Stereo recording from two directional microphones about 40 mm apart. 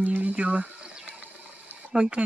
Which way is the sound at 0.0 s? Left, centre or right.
Right.